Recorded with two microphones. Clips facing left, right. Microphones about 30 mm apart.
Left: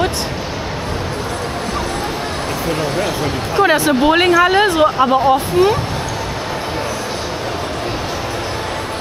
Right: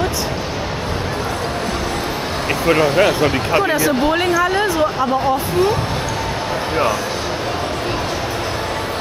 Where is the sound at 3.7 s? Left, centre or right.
Left.